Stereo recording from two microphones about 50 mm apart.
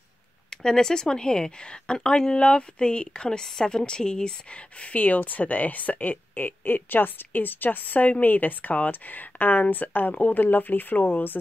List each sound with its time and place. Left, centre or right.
0.5 s speech: centre; by 11.3 s left